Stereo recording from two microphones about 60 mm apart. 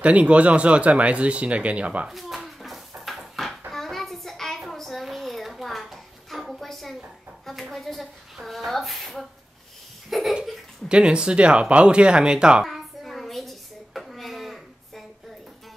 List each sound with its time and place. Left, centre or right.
0.0 s speech: right
2.0 s a sound: centre
10.9 s speech: centre
12.6 s hands: centre